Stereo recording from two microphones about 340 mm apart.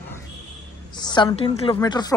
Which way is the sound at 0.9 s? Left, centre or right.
Centre.